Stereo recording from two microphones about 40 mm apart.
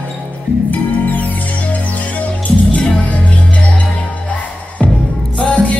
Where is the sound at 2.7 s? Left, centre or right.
Left.